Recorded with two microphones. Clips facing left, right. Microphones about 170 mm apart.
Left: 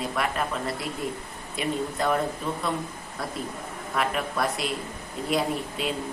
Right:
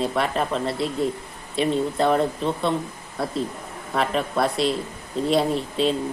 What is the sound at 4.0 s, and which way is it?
Speech, 30° right (ahead or behind).